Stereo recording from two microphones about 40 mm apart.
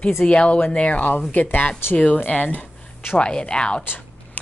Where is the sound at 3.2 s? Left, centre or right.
Left.